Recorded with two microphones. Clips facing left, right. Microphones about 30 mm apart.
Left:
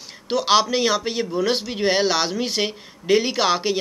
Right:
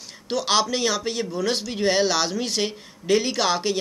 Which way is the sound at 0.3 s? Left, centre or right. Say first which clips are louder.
Left 4 dB; centre.